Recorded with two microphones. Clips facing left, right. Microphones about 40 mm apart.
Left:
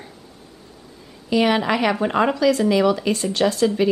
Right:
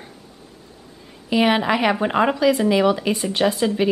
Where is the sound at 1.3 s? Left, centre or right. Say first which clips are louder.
Even; centre.